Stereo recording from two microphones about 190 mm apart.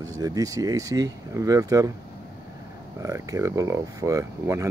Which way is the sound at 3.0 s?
15° right (ahead or behind).